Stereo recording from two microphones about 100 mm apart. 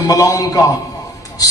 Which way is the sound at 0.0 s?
35° left (ahead or behind).